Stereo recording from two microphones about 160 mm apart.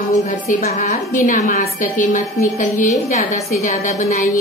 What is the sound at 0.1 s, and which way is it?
A woman's voice, 45° left (ahead or behind).